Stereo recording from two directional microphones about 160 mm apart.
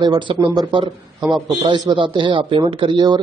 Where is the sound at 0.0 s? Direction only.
30° right (ahead or behind).